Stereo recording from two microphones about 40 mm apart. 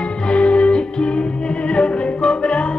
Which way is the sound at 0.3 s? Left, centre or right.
Left.